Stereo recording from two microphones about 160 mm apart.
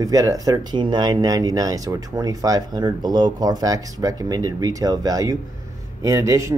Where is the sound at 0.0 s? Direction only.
20° right (ahead or behind).